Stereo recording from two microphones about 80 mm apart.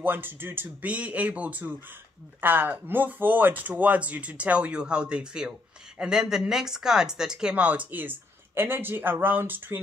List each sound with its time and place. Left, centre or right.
0.0 s speech: right